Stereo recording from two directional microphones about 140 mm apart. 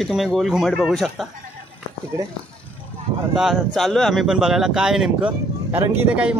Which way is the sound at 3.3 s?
Centre (ahead or behind).